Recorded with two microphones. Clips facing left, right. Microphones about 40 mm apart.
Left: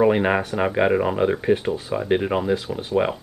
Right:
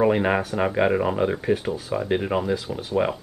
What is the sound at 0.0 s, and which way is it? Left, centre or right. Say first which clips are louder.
Speech: left 2 dB; centre.